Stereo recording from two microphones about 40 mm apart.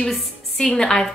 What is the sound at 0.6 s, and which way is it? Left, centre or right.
Speech, centre.